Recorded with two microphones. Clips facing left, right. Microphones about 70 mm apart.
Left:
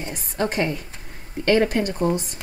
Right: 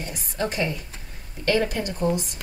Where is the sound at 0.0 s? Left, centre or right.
Left.